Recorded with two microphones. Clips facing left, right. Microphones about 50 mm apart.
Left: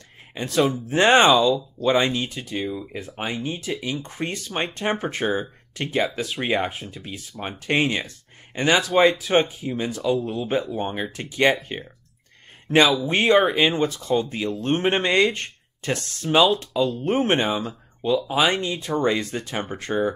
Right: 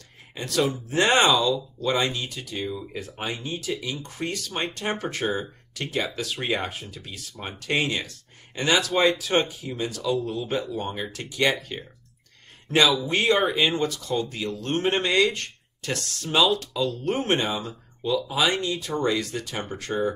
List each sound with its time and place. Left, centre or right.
0.3 s speech: left
12.9 s speech: left